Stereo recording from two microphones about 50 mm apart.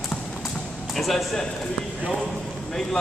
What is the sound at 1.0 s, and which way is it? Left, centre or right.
Speech, centre.